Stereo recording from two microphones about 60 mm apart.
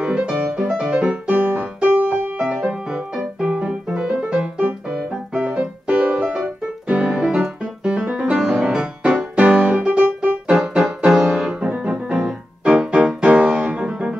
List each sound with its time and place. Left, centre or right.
0.0 s music: centre
7.4 s piano: centre
8.5 s music: centre